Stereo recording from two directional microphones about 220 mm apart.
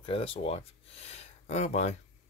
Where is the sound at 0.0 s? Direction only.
25° left (ahead or behind).